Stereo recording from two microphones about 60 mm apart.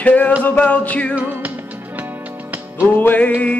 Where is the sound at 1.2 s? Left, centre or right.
Right.